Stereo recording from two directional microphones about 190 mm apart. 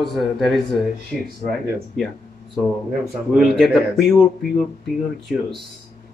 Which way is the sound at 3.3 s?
Centre (ahead or behind).